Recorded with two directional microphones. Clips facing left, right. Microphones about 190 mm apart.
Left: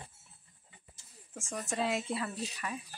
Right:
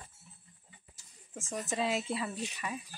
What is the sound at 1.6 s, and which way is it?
Speech, centre (ahead or behind).